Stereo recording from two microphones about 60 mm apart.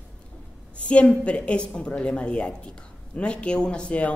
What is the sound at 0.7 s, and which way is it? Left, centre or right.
A woman's voice, left.